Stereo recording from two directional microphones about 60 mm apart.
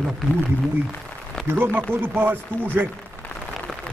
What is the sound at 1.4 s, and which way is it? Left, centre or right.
Speech, right.